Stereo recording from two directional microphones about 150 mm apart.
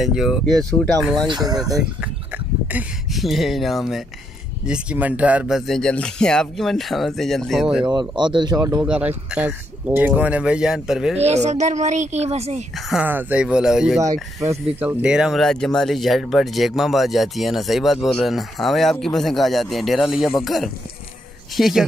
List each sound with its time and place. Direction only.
0.0 s speech: 5° right (ahead or behind)
1.2 s speech: 30° right (ahead or behind)
1.8 s a sound: 10° right (ahead or behind)
3.1 s speech: centre (ahead or behind)
7.8 s speech: 30° right (ahead or behind)
8.8 s speech: 5° right (ahead or behind)
11.1 s speech: 45° right (ahead or behind)
13.0 s speech: 10° right (ahead or behind)
14.4 s speech: 15° right (ahead or behind); by 21.8 s centre (ahead or behind)